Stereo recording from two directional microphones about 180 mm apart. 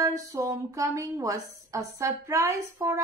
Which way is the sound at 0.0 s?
15° right (ahead or behind).